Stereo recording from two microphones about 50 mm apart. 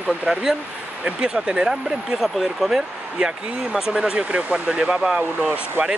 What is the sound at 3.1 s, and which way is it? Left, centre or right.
Speech, centre.